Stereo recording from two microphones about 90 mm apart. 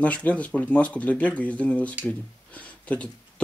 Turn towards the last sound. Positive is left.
turn(degrees=15)  # may be behind; listen again after turning